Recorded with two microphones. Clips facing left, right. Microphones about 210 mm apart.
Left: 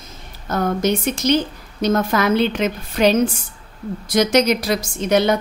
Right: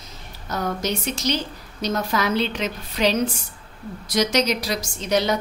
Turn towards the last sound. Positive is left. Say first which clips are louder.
# left 5 dB
turn(degrees=55)  # may be behind; listen again after turning